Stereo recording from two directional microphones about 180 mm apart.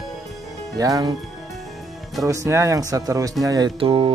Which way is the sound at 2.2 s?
15° right (ahead or behind).